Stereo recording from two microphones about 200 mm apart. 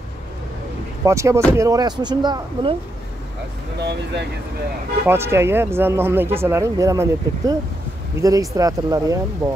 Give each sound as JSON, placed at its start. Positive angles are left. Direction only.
{"t": 1.0, "sound": "speech", "side_deg": -15}
{"t": 5.0, "sound": "speech", "side_deg": -10}